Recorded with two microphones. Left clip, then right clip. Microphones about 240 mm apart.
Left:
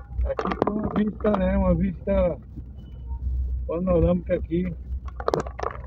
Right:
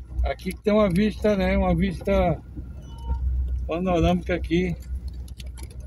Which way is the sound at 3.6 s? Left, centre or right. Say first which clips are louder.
Left 1 dB; right.